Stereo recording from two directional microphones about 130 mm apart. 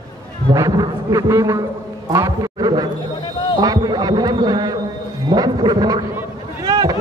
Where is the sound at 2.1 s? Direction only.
25° right (ahead or behind).